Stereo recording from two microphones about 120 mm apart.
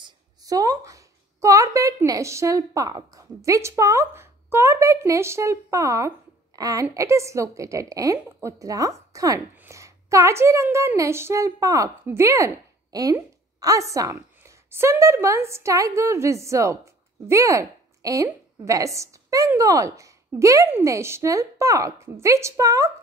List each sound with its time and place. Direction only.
0.0 s a woman's voice: 30° right (ahead or behind)